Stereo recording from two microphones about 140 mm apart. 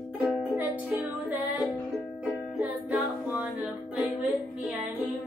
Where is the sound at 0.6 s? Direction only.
10° right (ahead or behind).